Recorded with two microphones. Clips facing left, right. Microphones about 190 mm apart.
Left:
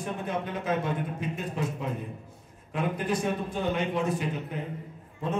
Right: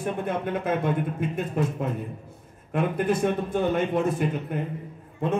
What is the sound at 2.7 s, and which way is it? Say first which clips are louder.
A man's voice: right 5 dB; 55° right (ahead or behind).